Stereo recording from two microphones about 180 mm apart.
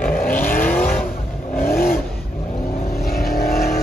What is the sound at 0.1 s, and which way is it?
Vehicle, 50° left (ahead or behind).